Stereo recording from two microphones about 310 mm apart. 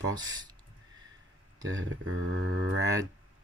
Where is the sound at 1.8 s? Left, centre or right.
Right.